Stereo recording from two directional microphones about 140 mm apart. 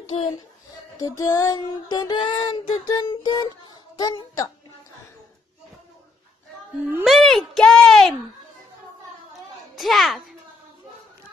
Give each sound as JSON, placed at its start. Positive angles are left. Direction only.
{"t": 0.9, "sound": "child singing", "side_deg": 20}
{"t": 6.8, "sound": "speech", "side_deg": -15}
{"t": 7.1, "sound": "speech", "side_deg": 0}
{"t": 9.8, "sound": "a child's voice", "side_deg": 0}